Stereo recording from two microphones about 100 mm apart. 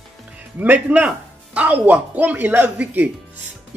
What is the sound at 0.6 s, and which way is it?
Speech, 15° right (ahead or behind).